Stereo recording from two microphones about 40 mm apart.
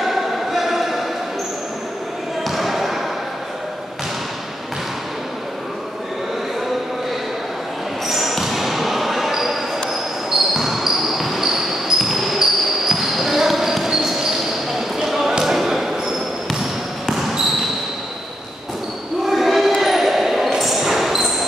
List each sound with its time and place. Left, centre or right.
0.0 s choir: centre
2.4 s basketball bounce: centre
8.1 s basketball bounce: centre
19.2 s a sound: centre
19.8 s basketball bounce: centre